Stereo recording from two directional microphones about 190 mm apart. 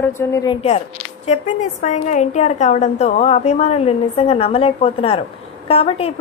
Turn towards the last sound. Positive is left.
turn(degrees=30)  # may be behind; listen again after turning